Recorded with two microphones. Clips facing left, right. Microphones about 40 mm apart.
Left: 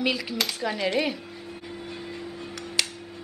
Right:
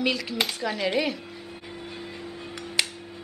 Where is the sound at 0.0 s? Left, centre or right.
Centre.